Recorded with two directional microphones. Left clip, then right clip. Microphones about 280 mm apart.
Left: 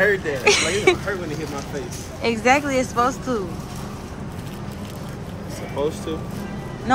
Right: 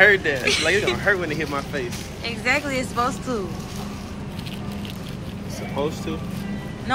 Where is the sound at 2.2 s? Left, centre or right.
Centre.